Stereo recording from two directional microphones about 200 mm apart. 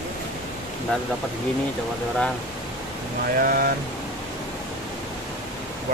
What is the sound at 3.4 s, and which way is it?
Speech, 45° right (ahead or behind).